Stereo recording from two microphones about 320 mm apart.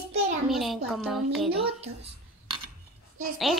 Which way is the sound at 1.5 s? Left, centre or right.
Centre.